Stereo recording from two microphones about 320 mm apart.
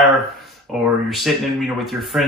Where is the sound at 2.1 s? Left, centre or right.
Centre.